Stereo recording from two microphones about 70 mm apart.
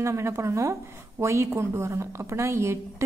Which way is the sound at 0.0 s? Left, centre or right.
Right.